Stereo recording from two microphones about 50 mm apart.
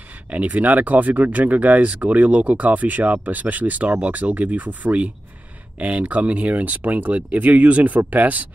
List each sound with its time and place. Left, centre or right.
0.3 s speech: right